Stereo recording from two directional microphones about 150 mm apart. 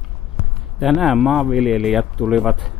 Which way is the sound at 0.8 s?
Centre (ahead or behind).